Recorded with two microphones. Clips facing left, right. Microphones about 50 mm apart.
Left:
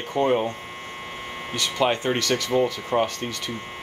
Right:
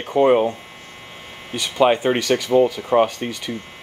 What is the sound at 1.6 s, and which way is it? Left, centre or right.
Speech, centre.